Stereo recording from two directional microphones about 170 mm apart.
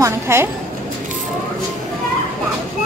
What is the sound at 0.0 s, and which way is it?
Speech, 15° right (ahead or behind).